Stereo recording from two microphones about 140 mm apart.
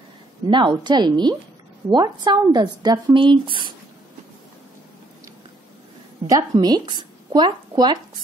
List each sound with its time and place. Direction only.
0.5 s a woman's voice: 35° right (ahead or behind)
6.2 s a woman's voice: 25° right (ahead or behind)